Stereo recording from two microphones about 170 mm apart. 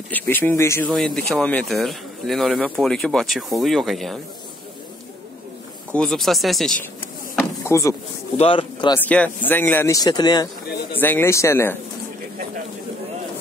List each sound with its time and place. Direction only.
0.1 s speech: 10° left (ahead or behind)
0.9 s speech: centre (ahead or behind)
5.9 s speech: centre (ahead or behind)
7.6 s speech: 15° left (ahead or behind)
8.4 s speech: 30° left (ahead or behind)
8.9 s speech: 10° left (ahead or behind); by 10.5 s 25° left (ahead or behind)
11.0 s speech: 10° left (ahead or behind)